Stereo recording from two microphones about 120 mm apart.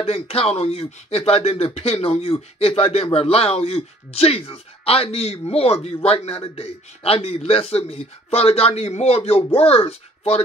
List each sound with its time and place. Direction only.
0.0 s speech: 55° left (ahead or behind)